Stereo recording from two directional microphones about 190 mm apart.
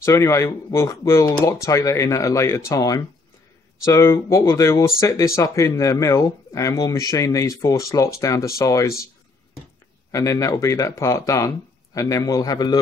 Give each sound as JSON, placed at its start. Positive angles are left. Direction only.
{"t": 0.0, "sound": "speech", "side_deg": 15}
{"t": 10.1, "sound": "speech", "side_deg": 15}